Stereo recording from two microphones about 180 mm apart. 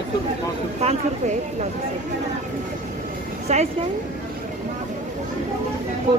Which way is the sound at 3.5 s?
40° right (ahead or behind).